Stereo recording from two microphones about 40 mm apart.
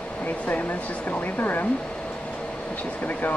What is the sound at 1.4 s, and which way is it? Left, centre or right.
Speech, left.